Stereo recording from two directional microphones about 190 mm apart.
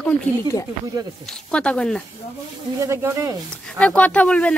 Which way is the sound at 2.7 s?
15° right (ahead or behind).